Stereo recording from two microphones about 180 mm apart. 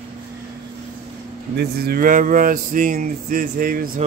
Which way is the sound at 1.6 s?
60° right (ahead or behind).